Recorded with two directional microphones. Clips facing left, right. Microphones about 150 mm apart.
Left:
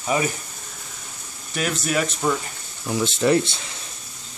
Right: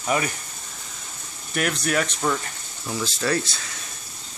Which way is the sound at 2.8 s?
20° left (ahead or behind).